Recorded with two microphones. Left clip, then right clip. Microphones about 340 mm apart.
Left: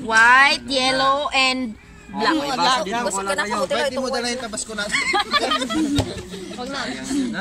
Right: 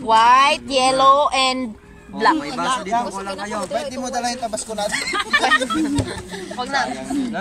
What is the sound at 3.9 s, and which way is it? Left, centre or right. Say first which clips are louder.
Speech: even; centre.